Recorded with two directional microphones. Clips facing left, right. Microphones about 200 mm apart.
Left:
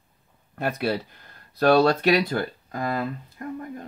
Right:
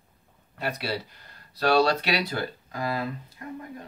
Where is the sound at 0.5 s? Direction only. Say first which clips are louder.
Left 5 dB; 50° left (ahead or behind).